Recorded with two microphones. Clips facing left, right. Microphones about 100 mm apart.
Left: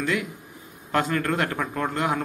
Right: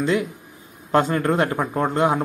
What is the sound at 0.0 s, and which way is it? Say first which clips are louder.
A man's voice: right 5 dB; 25° right (ahead or behind).